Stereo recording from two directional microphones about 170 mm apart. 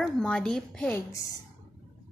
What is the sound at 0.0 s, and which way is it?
Speech, 5° left (ahead or behind).